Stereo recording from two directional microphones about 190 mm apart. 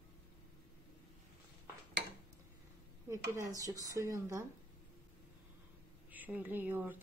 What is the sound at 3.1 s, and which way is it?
Speech, 15° right (ahead or behind).